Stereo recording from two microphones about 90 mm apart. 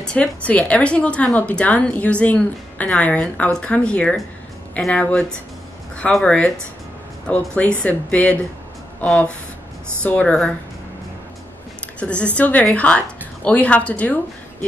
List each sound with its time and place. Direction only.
0.0 s a woman's voice: 10° left (ahead or behind)
12.0 s a woman's voice: 15° left (ahead or behind)